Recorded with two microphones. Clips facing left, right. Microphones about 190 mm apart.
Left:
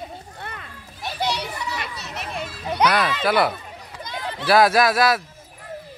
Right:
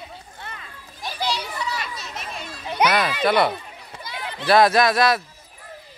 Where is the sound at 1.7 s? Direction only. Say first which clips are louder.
Left 1 dB; 65° left (ahead or behind).